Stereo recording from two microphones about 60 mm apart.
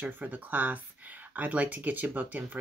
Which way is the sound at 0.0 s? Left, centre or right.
Right.